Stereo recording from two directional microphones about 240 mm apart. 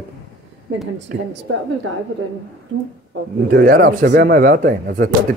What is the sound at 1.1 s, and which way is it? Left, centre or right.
Speech, right.